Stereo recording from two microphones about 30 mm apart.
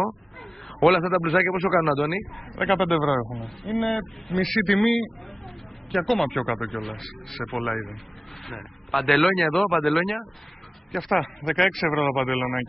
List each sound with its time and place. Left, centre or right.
0.9 s a man's voice: centre